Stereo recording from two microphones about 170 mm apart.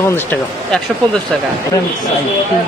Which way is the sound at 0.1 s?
10° left (ahead or behind).